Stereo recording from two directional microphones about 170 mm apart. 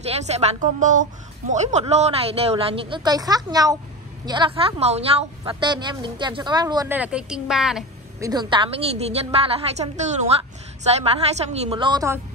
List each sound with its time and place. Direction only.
0.1 s speech: 40° right (ahead or behind)
5.4 s speech: 25° right (ahead or behind)
6.9 s a woman's voice: 5° right (ahead or behind)
8.2 s speech: 25° right (ahead or behind)